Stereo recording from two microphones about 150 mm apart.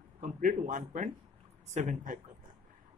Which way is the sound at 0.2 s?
60° right (ahead or behind).